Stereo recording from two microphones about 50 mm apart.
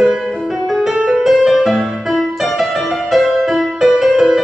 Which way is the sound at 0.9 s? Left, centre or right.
Centre.